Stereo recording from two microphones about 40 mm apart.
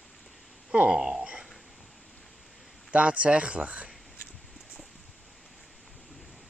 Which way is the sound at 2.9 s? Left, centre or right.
Right.